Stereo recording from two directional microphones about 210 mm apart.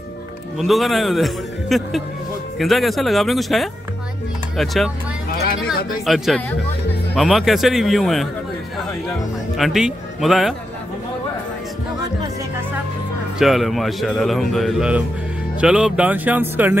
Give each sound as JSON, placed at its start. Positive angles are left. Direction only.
{"t": 0.6, "sound": "speech", "side_deg": 0}
{"t": 5.3, "sound": "music", "side_deg": 50}
{"t": 6.0, "sound": "speech", "side_deg": 0}
{"t": 9.6, "sound": "speech", "side_deg": 0}
{"t": 13.4, "sound": "speech", "side_deg": 0}